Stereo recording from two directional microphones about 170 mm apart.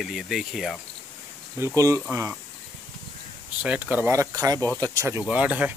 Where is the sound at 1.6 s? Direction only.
15° right (ahead or behind).